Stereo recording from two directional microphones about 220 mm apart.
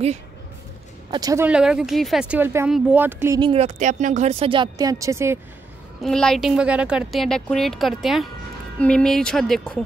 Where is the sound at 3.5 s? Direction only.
30° right (ahead or behind); by 5.4 s 10° right (ahead or behind).